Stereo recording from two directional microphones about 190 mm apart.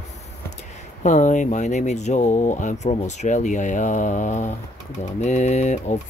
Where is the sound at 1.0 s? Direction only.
40° left (ahead or behind).